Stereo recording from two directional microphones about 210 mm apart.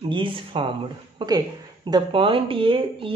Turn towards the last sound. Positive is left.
turn(degrees=-25)  # may be behind; listen again after turning